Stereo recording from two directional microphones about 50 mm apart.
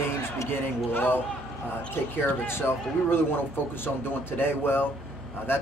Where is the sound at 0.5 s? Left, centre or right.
Left.